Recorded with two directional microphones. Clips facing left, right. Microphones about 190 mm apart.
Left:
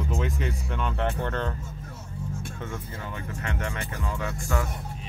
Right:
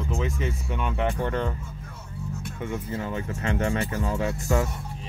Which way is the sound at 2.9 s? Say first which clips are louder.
Right 6 dB; 30° right (ahead or behind).